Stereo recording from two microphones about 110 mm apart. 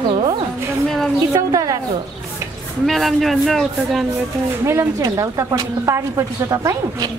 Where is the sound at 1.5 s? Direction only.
30° right (ahead or behind).